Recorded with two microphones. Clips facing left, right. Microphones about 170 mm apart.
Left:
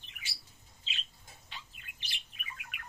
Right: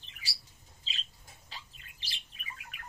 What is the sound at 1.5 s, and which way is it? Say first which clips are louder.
Bird: even; 30° right (ahead or behind).